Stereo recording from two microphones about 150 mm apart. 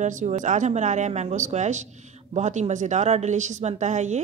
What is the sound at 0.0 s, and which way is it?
Speech, 55° right (ahead or behind).